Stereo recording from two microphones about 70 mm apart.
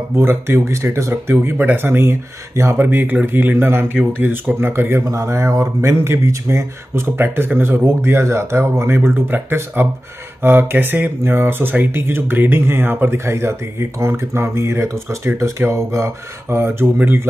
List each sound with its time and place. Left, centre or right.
0.1 s speech: right
3.5 s speech: right
5.0 s speech: right